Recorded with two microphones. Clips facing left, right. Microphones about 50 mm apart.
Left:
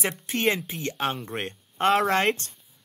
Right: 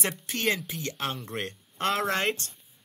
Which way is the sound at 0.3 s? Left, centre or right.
Left.